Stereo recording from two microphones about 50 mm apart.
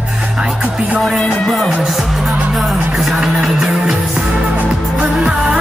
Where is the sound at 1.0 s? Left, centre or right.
Centre.